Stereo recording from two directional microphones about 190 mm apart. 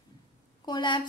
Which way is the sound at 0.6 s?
25° left (ahead or behind).